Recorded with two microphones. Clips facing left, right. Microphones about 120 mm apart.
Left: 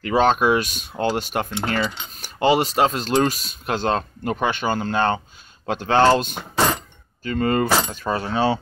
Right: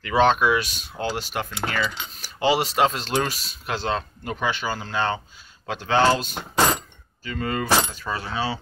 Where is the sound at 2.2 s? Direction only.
45° left (ahead or behind).